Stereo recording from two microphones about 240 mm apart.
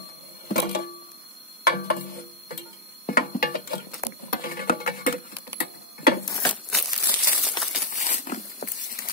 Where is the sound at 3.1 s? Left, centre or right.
Left.